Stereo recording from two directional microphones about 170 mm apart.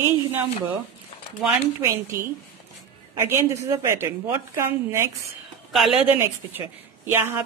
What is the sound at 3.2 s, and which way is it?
A woman's voice, 15° right (ahead or behind).